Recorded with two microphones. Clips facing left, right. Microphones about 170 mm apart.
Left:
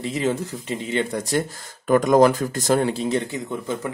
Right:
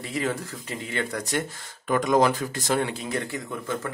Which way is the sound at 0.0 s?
20° left (ahead or behind).